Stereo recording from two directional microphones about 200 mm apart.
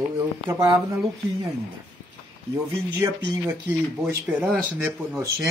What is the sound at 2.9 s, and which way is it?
Speech, 20° right (ahead or behind).